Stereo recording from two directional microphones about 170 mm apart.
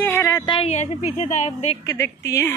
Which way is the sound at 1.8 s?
15° left (ahead or behind).